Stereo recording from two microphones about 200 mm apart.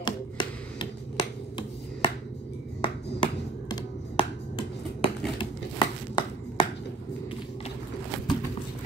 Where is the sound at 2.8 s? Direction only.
20° left (ahead or behind).